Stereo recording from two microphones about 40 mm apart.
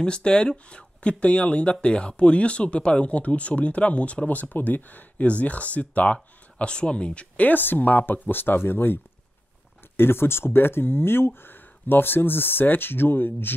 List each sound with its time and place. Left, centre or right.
0.0 s speech: left
6.6 s speech: left
7.4 s speech: left